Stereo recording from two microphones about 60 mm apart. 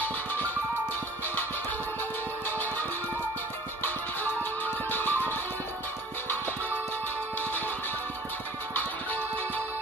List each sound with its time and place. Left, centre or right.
0.0 s music: left
3.8 s music: left